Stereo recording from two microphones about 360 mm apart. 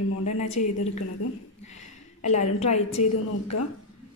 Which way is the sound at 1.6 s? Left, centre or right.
Centre.